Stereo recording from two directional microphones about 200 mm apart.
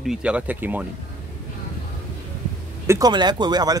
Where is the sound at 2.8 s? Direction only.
15° right (ahead or behind).